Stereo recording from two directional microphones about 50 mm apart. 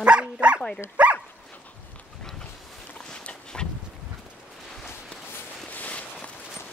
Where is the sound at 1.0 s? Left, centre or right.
Right.